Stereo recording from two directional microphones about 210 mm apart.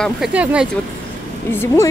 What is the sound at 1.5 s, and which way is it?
Speech, 10° left (ahead or behind).